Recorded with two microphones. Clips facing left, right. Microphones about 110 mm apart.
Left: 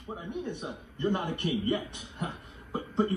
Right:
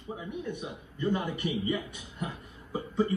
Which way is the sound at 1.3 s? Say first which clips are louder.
Left 2 dB; 65° left (ahead or behind).